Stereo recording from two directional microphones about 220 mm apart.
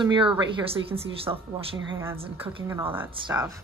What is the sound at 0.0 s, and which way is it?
Speech, 20° right (ahead or behind).